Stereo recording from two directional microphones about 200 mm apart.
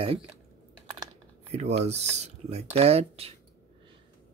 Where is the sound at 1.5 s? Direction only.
30° right (ahead or behind).